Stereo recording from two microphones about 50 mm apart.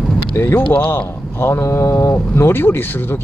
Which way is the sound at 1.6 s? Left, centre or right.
Left.